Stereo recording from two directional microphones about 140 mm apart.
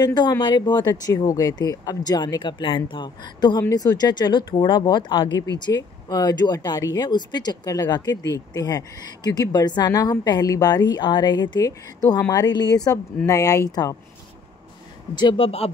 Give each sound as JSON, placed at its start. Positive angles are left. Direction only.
{"t": 0.0, "sound": "speech", "side_deg": 30}
{"t": 15.1, "sound": "speech", "side_deg": 35}